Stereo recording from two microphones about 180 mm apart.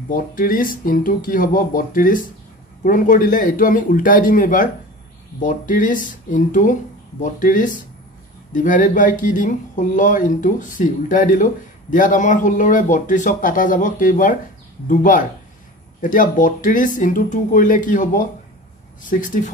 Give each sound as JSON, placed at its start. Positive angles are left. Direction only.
{"t": 0.1, "sound": "speech", "side_deg": 50}